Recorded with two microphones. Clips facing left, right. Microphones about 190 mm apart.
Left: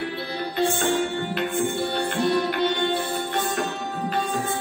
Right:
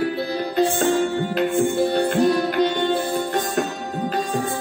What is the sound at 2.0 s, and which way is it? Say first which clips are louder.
Music: right 4 dB; 40° right (ahead or behind).